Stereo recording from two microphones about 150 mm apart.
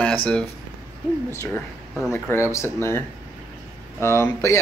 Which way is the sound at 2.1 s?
15° left (ahead or behind).